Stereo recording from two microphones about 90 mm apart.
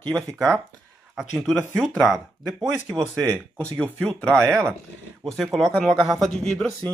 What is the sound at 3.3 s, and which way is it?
Speech, 10° left (ahead or behind).